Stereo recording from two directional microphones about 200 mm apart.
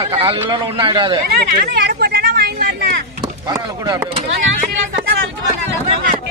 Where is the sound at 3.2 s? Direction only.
20° right (ahead or behind).